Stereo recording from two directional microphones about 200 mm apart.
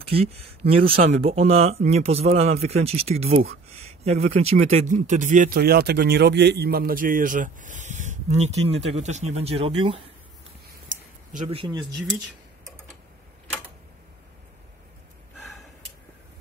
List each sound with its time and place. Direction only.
0.0 s speech: 30° right (ahead or behind)
11.3 s speech: 30° right (ahead or behind)
11.8 s speech: centre (ahead or behind)